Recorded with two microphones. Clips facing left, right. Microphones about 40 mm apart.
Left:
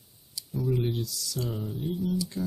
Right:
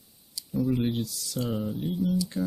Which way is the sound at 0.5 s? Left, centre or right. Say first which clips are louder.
Right 3 dB; centre.